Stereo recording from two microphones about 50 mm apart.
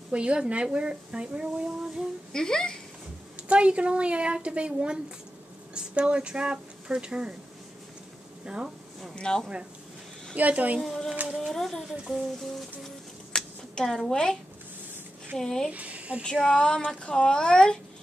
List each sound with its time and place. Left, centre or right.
0.1 s speech: right
2.3 s speech: centre
3.4 s speech: right
8.5 s speech: centre
9.1 s speech: centre
10.3 s a woman's voice: right
10.8 s speech: centre
13.3 s a sound: centre
13.7 s speech: centre
15.7 s speech: right
16.4 s speech: centre